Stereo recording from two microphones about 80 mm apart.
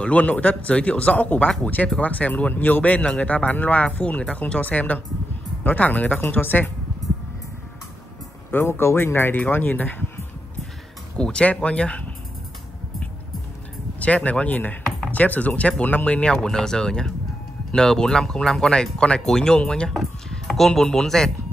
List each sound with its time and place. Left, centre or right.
0.0 s speech: centre
8.5 s speech: left
11.1 s speech: centre
13.9 s speech: centre